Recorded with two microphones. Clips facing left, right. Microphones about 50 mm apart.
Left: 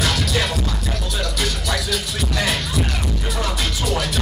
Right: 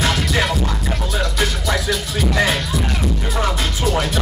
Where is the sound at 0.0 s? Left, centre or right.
Right.